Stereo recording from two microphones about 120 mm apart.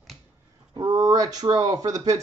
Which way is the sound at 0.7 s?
30° right (ahead or behind).